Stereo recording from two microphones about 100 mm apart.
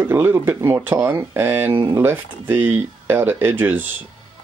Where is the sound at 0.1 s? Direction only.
20° right (ahead or behind).